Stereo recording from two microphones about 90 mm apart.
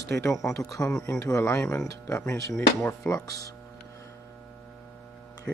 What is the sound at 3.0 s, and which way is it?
Speech, 10° left (ahead or behind).